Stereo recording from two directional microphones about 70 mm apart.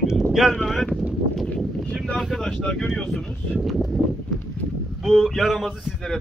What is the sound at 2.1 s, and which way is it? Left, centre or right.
Speech, centre.